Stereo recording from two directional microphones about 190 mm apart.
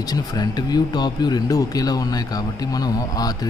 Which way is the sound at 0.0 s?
20° left (ahead or behind).